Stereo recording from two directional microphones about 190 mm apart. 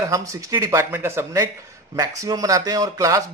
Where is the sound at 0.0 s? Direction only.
15° right (ahead or behind).